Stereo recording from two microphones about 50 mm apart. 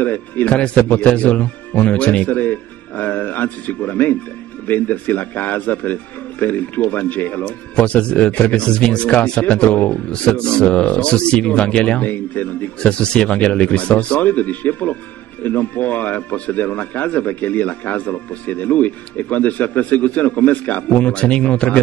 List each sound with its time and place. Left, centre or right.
0.0 s a man's voice: left
7.4 s speech: left
12.0 s speech: left
13.0 s speech: left